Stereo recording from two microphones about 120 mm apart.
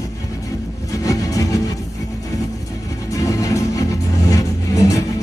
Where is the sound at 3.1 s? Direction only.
30° left (ahead or behind).